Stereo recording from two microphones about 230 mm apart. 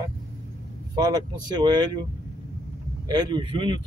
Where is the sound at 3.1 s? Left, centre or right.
Centre.